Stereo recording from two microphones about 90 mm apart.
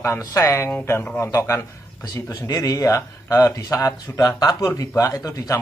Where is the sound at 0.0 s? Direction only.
35° left (ahead or behind).